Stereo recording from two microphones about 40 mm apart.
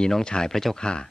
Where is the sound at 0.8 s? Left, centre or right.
Left.